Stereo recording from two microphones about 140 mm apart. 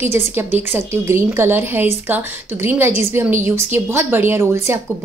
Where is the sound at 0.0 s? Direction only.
15° right (ahead or behind).